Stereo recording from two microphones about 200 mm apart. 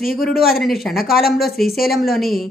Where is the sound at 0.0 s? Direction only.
Centre (ahead or behind).